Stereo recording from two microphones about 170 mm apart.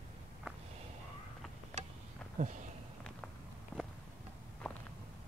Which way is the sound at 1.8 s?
40° right (ahead or behind).